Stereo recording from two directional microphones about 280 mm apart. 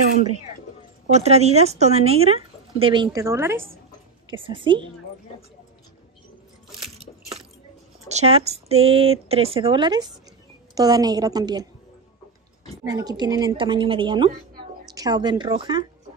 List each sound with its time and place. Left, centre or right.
1.1 s a woman's voice: right
8.1 s a woman's voice: right
12.8 s a woman's voice: centre